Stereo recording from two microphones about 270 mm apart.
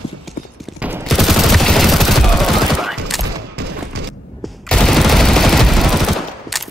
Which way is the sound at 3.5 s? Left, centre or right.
Right.